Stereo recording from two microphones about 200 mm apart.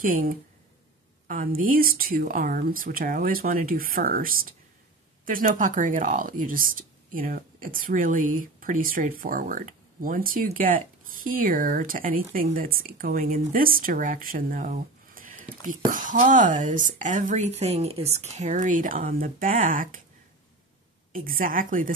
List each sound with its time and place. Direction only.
0.0 s speech: 45° right (ahead or behind)
21.1 s speech: 45° right (ahead or behind)